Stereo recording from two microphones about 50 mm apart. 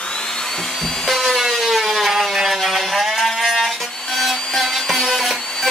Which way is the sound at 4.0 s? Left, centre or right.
Centre.